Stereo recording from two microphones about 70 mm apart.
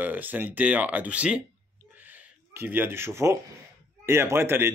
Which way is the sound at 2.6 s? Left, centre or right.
Right.